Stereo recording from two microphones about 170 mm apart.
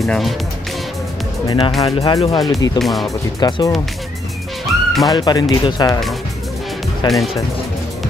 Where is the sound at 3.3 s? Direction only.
20° left (ahead or behind).